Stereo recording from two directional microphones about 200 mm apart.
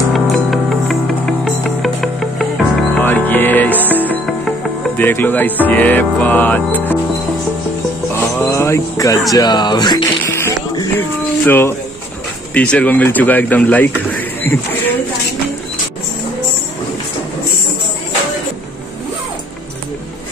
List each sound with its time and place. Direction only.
0.1 s music: centre (ahead or behind)
3.7 s music: 10° right (ahead or behind)
4.9 s speech: 10° left (ahead or behind)
8.4 s a sound: 15° left (ahead or behind)
9.3 s speech: 20° left (ahead or behind)
10.2 s music: 10° left (ahead or behind)
12.5 s speech: 5° left (ahead or behind)